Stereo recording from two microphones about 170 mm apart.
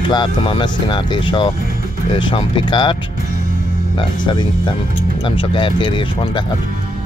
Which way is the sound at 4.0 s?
25° left (ahead or behind).